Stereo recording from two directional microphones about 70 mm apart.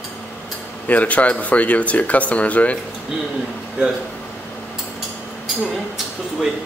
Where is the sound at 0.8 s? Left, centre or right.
Left.